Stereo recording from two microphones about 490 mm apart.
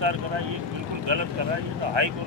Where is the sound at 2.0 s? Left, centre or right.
Right.